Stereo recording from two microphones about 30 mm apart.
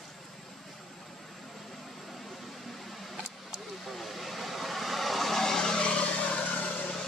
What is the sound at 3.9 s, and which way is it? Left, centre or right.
Vehicle, centre.